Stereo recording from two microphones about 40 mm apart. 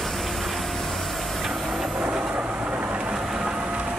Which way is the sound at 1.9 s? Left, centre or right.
Right.